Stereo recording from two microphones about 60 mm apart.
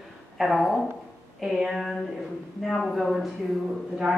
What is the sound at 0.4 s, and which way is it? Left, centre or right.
Speech, centre.